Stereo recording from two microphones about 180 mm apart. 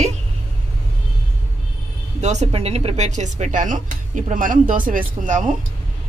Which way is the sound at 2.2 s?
40° right (ahead or behind).